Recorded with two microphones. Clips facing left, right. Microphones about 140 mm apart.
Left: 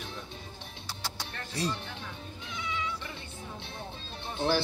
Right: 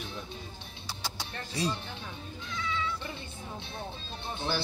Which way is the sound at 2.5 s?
15° left (ahead or behind).